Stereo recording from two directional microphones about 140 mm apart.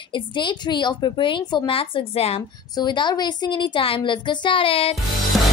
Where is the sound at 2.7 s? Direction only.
30° left (ahead or behind).